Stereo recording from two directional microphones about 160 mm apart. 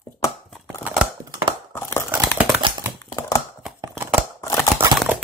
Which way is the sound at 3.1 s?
20° left (ahead or behind).